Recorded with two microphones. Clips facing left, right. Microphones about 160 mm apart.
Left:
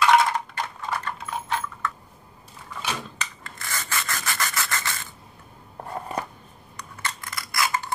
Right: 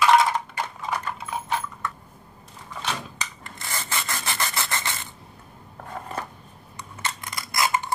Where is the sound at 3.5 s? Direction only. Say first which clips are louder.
Even; 20° right (ahead or behind).